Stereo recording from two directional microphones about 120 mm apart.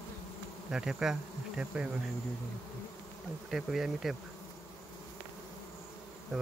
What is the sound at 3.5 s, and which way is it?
Speech, 5° right (ahead or behind).